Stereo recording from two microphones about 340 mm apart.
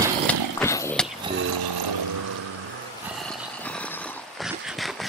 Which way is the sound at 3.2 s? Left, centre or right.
Centre.